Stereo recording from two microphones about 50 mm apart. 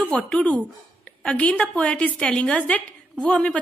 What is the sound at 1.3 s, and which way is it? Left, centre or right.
Speech, left.